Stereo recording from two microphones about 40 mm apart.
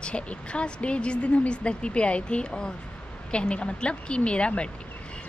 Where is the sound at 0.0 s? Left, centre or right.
Left.